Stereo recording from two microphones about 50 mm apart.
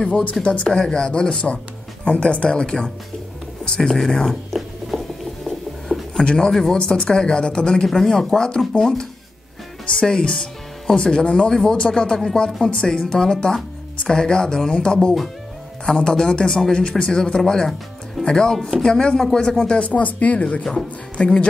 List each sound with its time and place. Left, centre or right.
0.0 s speech: left
4.3 s a sound: centre
6.2 s speech: centre
6.8 s speech: centre
19.8 s speech: left